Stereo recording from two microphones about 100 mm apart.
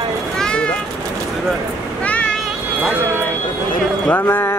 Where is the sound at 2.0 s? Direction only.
15° left (ahead or behind).